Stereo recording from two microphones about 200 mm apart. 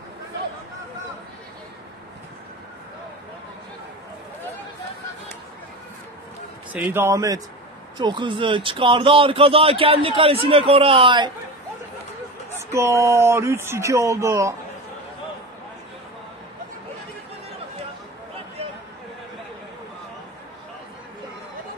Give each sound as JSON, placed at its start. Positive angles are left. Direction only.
{"t": 6.7, "sound": "speech", "side_deg": -10}
{"t": 12.5, "sound": "speech", "side_deg": -15}